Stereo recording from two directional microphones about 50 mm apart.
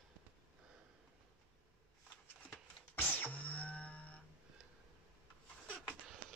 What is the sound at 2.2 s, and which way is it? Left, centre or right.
Music, left.